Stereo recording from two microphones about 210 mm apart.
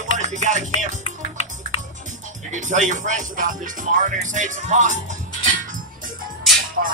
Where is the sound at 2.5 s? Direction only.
35° right (ahead or behind).